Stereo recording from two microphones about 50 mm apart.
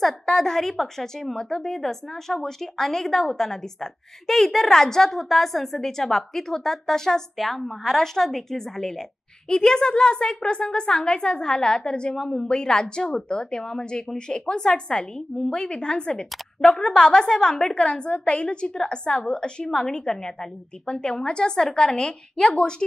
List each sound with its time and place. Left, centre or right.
0.0 s speech: centre